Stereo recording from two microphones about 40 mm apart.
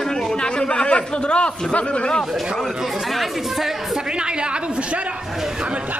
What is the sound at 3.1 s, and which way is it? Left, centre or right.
Speech, centre.